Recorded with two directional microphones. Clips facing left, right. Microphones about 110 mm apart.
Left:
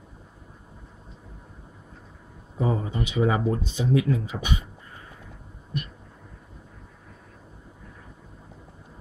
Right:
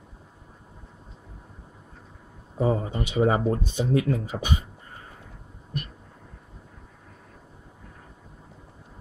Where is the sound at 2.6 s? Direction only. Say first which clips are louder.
Right 2 dB; 35° right (ahead or behind).